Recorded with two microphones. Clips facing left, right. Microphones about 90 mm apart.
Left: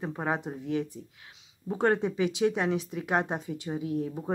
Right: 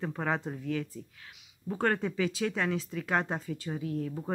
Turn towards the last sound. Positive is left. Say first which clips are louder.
# left 3 dB
turn(degrees=15)  # may be behind; listen again after turning